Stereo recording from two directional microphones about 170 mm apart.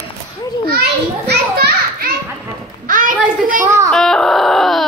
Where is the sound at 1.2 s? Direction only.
75° right (ahead or behind).